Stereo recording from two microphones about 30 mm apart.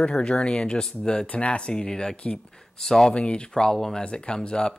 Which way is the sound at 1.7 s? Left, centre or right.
Left.